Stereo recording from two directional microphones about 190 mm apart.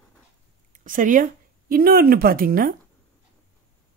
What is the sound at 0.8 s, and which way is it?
Speech, 45° right (ahead or behind).